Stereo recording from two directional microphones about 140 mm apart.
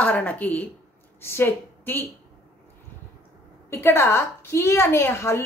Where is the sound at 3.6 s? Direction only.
20° left (ahead or behind).